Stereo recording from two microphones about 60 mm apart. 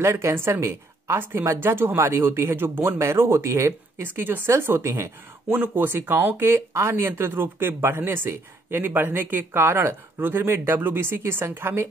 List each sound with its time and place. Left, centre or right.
0.0 s a woman's voice: right
3.0 s a woman's voice: right
4.0 s a woman's voice: right
5.6 s speech: right
6.5 s speech: right